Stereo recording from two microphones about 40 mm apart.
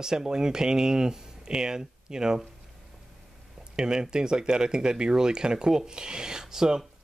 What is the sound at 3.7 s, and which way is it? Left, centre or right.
Speech, centre.